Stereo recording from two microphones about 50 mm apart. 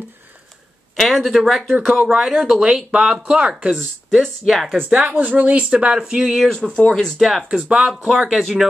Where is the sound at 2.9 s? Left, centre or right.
Centre.